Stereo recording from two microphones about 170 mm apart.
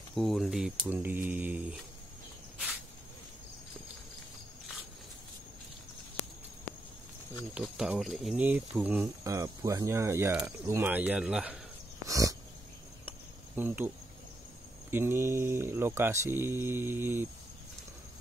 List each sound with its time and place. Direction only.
0.1 s speech: centre (ahead or behind)
7.5 s speech: 5° right (ahead or behind)
12.1 s dog: 20° right (ahead or behind)
13.6 s speech: 10° right (ahead or behind)